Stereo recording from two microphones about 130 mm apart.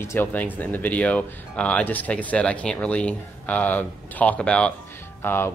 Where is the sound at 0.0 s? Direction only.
15° left (ahead or behind).